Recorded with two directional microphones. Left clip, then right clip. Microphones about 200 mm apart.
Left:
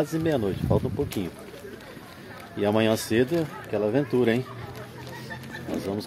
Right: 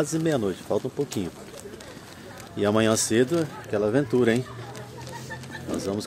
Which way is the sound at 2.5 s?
5° right (ahead or behind).